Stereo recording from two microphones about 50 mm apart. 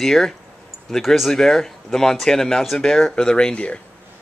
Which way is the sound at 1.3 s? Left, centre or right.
Centre.